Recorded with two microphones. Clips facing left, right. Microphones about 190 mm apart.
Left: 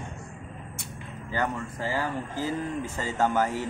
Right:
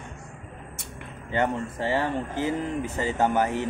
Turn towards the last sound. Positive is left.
turn(degrees=-20)  # may be behind; listen again after turning